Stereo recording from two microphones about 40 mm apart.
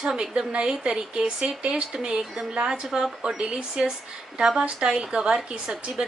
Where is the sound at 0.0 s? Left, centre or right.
Centre.